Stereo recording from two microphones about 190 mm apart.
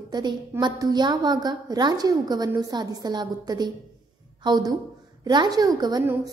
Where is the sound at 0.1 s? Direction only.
25° right (ahead or behind).